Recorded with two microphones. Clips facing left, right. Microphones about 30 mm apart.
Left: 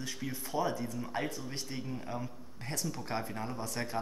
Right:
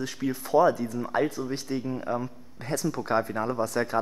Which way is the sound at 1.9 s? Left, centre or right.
Right.